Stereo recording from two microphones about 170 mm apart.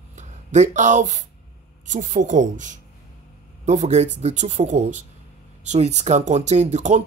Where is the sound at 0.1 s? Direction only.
45° right (ahead or behind).